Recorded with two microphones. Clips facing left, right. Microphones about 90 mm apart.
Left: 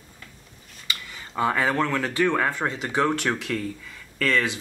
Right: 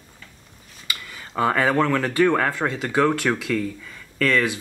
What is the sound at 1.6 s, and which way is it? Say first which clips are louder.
Speech: right 4 dB; 15° right (ahead or behind).